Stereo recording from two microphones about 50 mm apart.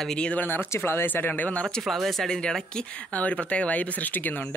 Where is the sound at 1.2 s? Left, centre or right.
Left.